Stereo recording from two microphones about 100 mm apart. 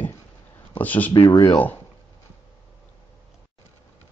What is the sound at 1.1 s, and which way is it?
Speech, 50° left (ahead or behind).